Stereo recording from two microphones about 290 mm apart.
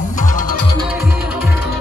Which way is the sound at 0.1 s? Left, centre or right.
Left.